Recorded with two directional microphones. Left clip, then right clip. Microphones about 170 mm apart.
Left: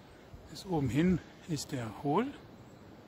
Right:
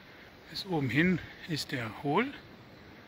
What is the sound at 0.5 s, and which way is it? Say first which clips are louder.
Speech: right 3 dB; 10° left (ahead or behind).